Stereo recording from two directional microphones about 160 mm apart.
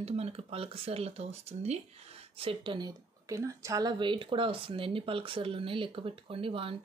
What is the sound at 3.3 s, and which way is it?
Speech, 20° right (ahead or behind).